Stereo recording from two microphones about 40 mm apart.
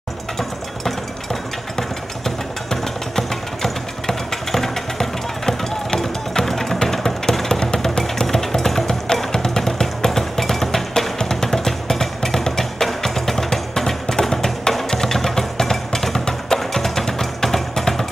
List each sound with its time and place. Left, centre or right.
0.4 s engine: centre
5.9 s music: centre